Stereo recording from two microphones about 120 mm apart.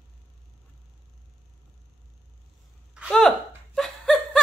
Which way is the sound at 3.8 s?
Centre (ahead or behind).